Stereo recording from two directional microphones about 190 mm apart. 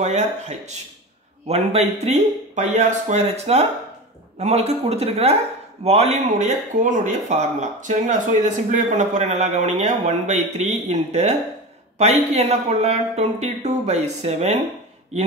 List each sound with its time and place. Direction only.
0.0 s speech: 35° right (ahead or behind)